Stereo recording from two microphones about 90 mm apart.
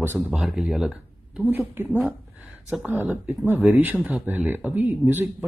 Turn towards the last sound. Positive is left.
turn(degrees=-20)  # may be behind; listen again after turning